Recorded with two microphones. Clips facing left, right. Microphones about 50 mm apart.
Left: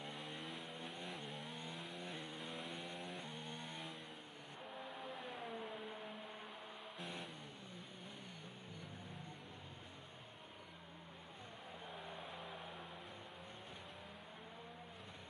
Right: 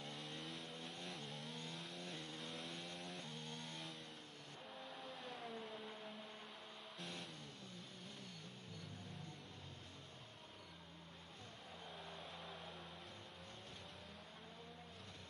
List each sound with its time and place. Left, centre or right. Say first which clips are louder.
0.0 s vehicle: left 2 dB; centre
11.9 s vehicle: left 3 dB; centre